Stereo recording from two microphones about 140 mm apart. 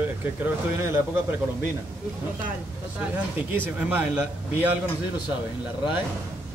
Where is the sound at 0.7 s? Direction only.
20° right (ahead or behind).